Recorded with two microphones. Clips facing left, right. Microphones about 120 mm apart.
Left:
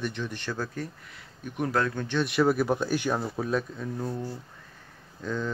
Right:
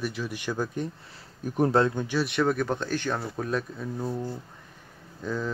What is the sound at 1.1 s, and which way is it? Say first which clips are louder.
Speech: right 6 dB; 35° right (ahead or behind).